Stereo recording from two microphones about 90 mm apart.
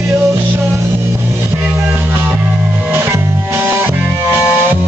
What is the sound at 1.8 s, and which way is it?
Music, 25° right (ahead or behind).